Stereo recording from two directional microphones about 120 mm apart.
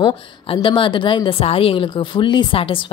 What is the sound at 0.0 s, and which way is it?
A woman's voice, 50° left (ahead or behind).